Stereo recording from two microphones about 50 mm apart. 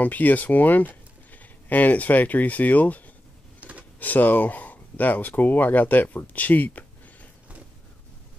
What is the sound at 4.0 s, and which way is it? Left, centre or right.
Speech, left.